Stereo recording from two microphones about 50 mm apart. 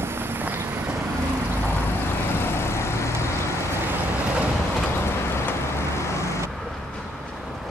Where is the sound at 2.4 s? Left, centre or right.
Left.